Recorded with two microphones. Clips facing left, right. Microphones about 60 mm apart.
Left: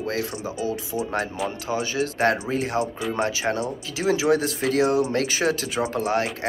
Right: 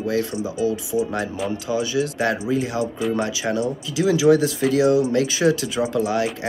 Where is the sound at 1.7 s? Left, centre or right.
Left.